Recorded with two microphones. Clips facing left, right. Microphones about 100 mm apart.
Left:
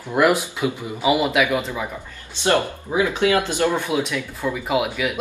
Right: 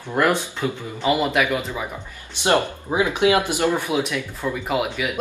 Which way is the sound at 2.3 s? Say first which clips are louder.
Even; 20° right (ahead or behind).